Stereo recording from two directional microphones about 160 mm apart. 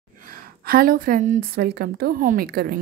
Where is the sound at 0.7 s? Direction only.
65° right (ahead or behind).